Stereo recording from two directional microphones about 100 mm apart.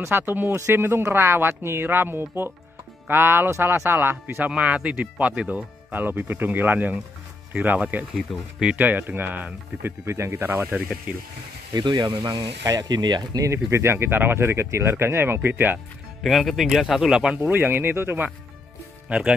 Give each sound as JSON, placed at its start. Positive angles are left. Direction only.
{"t": 0.0, "sound": "speech", "side_deg": -20}
{"t": 4.5, "sound": "speech", "side_deg": -10}
{"t": 8.2, "sound": "speech", "side_deg": 0}
{"t": 8.6, "sound": "speech", "side_deg": -20}
{"t": 11.7, "sound": "speech", "side_deg": -45}
{"t": 13.7, "sound": "speech", "side_deg": -25}
{"t": 16.2, "sound": "speech", "side_deg": 0}
{"t": 17.4, "sound": "speech", "side_deg": -20}
{"t": 19.0, "sound": "speech", "side_deg": -10}